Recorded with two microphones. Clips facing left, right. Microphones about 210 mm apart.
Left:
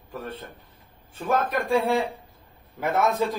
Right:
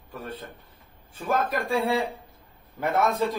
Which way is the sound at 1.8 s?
Centre (ahead or behind).